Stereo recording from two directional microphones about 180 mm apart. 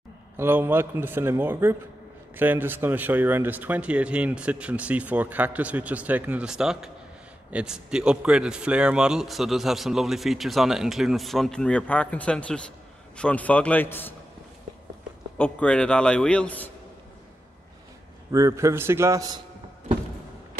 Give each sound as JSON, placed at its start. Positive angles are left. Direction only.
{"t": 0.4, "sound": "a man's voice", "side_deg": -10}
{"t": 15.3, "sound": "a man's voice", "side_deg": 5}
{"t": 18.3, "sound": "speech", "side_deg": -15}